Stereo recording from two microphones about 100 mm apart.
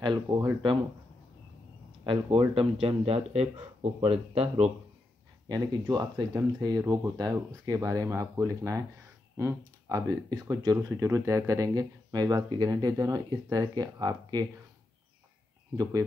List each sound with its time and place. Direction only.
0.0 s speech: 45° right (ahead or behind)
2.3 s speech: 65° right (ahead or behind)
3.3 s speech: 90° right
5.5 s speech: 45° right (ahead or behind)
15.7 s speech: 35° right (ahead or behind)